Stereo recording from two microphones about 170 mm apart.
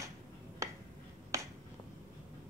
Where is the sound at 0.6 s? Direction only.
15° right (ahead or behind).